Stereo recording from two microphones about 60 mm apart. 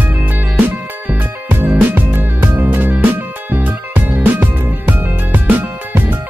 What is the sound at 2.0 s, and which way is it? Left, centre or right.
Music, right.